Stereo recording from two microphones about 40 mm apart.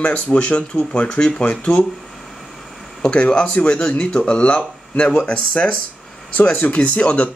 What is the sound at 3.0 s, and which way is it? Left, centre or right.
Speech, left.